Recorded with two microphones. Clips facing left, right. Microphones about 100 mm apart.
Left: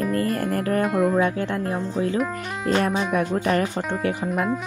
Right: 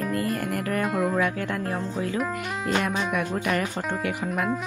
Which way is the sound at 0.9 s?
Centre (ahead or behind).